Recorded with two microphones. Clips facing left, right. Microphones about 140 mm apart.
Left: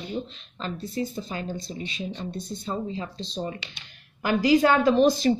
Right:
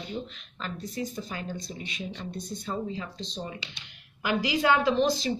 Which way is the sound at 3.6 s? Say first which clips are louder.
Left 1 dB; 50° left (ahead or behind).